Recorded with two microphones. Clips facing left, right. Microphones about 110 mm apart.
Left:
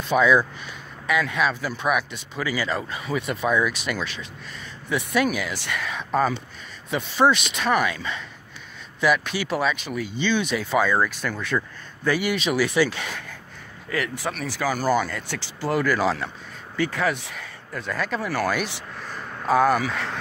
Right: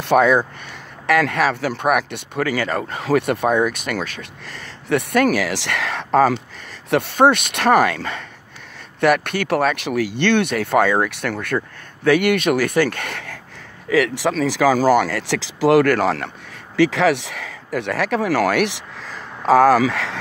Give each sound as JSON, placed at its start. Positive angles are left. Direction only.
{"t": 0.0, "sound": "speech", "side_deg": -60}
{"t": 3.0, "sound": "speech", "side_deg": -80}
{"t": 4.5, "sound": "speech", "side_deg": -85}
{"t": 6.9, "sound": "speech", "side_deg": -65}
{"t": 16.7, "sound": "speech", "side_deg": -90}